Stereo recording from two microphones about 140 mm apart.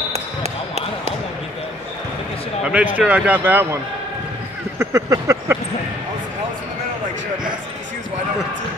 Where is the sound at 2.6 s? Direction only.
10° right (ahead or behind).